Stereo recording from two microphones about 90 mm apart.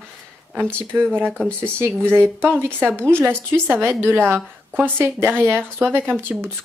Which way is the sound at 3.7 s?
25° right (ahead or behind).